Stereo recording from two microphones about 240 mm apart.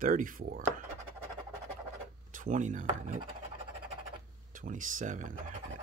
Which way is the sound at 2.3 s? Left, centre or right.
Right.